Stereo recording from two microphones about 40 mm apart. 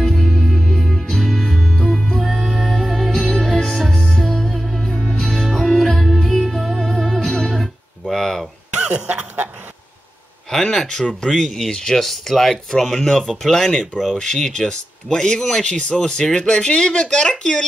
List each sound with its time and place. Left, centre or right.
0.0 s music: centre
1.9 s music: centre
2.2 s music: centre
7.5 s guitar: centre
10.5 s speech: centre
12.0 s speech: centre; by 17.6 s left